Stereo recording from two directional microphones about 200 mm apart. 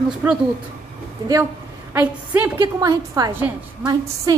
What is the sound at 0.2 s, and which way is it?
Speech, 10° right (ahead or behind).